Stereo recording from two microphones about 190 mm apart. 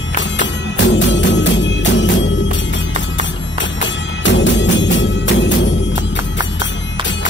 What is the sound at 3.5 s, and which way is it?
Music, 70° left (ahead or behind).